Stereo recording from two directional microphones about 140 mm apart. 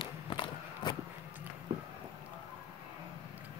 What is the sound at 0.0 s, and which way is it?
Walk, 35° left (ahead or behind).